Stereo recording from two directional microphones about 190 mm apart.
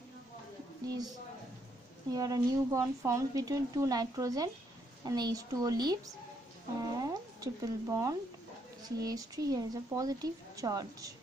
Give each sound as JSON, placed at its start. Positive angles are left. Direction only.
{"t": 0.8, "sound": "a woman's voice", "side_deg": -20}